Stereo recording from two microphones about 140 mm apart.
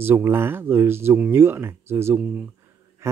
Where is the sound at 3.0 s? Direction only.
20° right (ahead or behind).